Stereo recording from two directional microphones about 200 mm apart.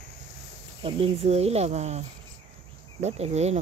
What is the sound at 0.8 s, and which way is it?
Cricket, 30° right (ahead or behind).